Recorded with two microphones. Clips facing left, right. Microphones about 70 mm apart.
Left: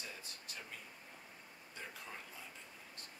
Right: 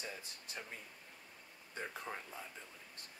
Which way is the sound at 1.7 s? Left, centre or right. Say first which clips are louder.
Right 6 dB; right.